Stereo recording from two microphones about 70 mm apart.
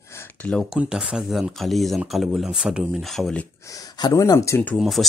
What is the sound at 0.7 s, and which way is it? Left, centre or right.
Speech, centre.